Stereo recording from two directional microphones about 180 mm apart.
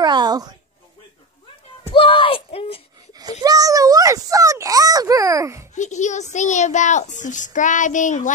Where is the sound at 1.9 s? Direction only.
30° left (ahead or behind).